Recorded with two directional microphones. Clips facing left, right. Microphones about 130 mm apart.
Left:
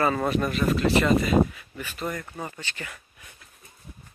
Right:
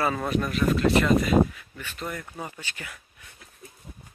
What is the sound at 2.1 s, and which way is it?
Speech, 5° right (ahead or behind).